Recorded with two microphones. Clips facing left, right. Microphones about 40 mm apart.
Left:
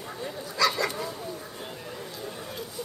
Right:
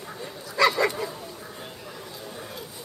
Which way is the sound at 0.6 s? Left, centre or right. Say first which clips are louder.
Right 4 dB; right.